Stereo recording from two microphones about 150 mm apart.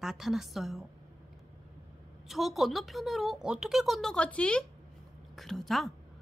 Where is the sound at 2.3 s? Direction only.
Centre (ahead or behind).